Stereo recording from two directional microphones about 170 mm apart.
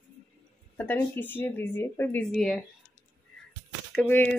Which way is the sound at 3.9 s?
10° left (ahead or behind).